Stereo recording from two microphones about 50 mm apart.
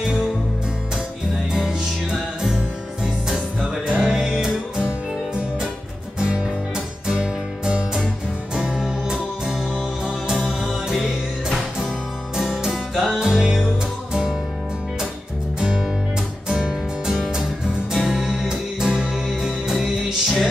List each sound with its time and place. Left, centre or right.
1.5 s music: centre
3.6 s music: centre
7.1 s music: centre
16.4 s music: centre